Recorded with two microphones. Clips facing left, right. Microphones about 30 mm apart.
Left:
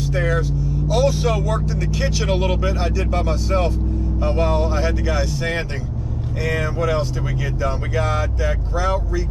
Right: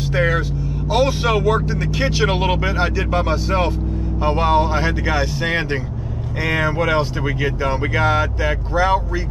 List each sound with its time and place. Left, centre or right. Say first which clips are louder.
0.0 s speech: right 3 dB; right